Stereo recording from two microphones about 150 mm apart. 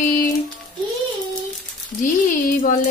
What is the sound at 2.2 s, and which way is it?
Speech, 60° left (ahead or behind).